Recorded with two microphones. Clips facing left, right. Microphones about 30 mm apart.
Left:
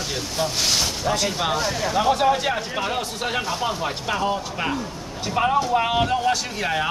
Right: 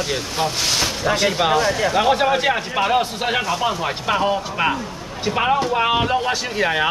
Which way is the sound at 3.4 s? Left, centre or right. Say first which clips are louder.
Right 4 dB; centre.